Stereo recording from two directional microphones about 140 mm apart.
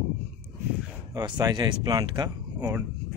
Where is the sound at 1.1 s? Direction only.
25° right (ahead or behind).